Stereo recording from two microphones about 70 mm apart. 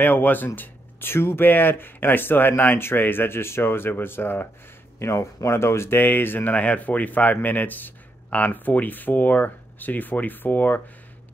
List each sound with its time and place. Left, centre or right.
0.0 s speech: left
4.9 s speech: left